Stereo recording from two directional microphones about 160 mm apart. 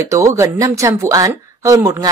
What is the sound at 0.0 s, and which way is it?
Speech, 20° right (ahead or behind).